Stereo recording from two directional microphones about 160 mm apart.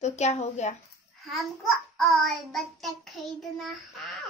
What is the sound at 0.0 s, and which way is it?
Speech, 45° left (ahead or behind).